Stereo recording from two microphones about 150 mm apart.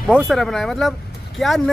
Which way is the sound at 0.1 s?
Centre (ahead or behind).